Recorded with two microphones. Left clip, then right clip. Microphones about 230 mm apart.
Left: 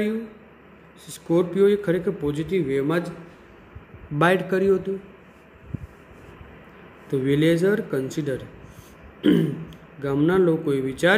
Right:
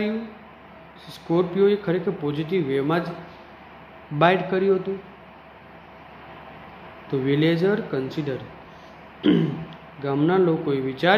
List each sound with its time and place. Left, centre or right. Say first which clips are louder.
1.0 s speech: left 1 dB; left
4.2 s speech: right 1 dB; left
7.1 s speech: left 1 dB; left